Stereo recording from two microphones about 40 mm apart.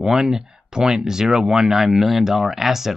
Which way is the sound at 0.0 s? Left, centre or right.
Centre.